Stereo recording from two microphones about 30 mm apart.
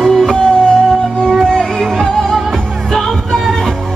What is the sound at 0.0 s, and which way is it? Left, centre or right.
Music, centre.